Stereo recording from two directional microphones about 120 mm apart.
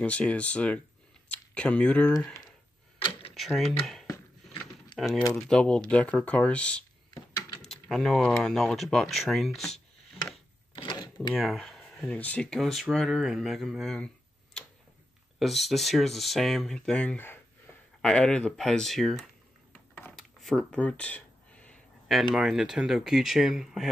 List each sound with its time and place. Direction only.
0.0 s speech: 10° left (ahead or behind)
3.0 s a sound: 50° left (ahead or behind)
3.3 s speech: centre (ahead or behind)
4.9 s speech: centre (ahead or behind)
10.7 s cash register: 45° left (ahead or behind)
11.3 s speech: centre (ahead or behind)
20.2 s a sound: 5° left (ahead or behind)
22.3 s speech: 5° right (ahead or behind)